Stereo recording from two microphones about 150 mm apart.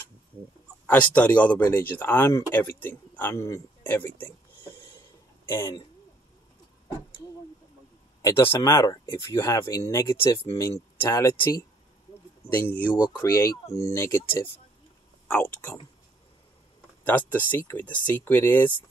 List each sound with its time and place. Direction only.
0.8 s speech: 10° left (ahead or behind)
5.5 s speech: 15° left (ahead or behind)
8.2 s speech: 15° left (ahead or behind)
17.0 s speech: 10° left (ahead or behind)